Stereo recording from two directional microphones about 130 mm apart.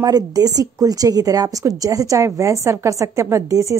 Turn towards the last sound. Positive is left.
turn(degrees=-25)  # may be behind; listen again after turning